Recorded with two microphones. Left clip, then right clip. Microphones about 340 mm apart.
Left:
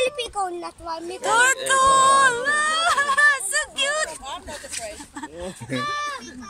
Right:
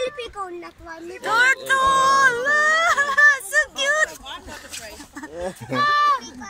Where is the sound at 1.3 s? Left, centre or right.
Centre.